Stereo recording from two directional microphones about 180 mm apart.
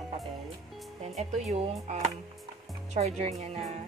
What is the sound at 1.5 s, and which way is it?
Speech, 40° right (ahead or behind).